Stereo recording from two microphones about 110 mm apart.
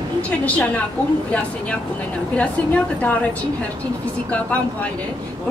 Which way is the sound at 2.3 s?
10° left (ahead or behind).